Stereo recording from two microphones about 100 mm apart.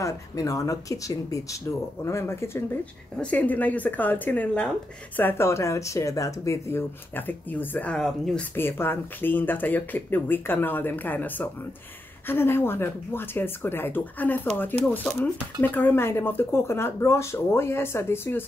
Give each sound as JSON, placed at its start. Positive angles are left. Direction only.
{"t": 0.0, "sound": "a woman's voice", "side_deg": 35}
{"t": 2.8, "sound": "a woman's voice", "side_deg": 15}
{"t": 7.2, "sound": "speech", "side_deg": 20}
{"t": 8.0, "sound": "speech", "side_deg": 5}
{"t": 8.5, "sound": "a woman's voice", "side_deg": 20}